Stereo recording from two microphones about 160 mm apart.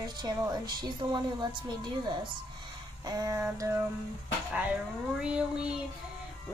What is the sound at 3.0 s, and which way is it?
Speech, 25° right (ahead or behind).